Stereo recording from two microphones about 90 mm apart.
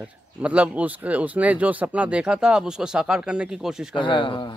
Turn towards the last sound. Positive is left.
turn(degrees=60)  # may be behind; listen again after turning